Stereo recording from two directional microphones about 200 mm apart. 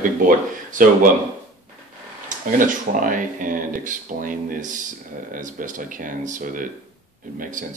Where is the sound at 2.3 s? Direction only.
40° right (ahead or behind).